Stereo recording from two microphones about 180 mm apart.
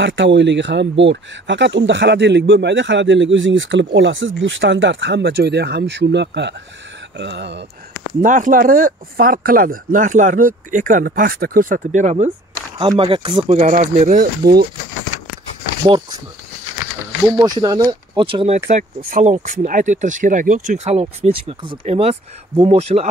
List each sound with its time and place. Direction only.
0.0 s speech: 85° right
8.2 s speech: 50° right (ahead or behind)
12.7 s speech: 25° right (ahead or behind)
13.5 s speech: 40° right (ahead or behind); by 14.7 s 60° right (ahead or behind)
17.4 s speech: 20° right (ahead or behind)
18.7 s speech: 45° right (ahead or behind)